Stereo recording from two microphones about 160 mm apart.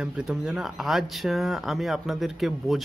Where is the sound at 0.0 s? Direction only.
5° right (ahead or behind).